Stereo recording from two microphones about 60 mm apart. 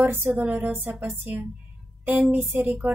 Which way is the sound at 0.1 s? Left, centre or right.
Right.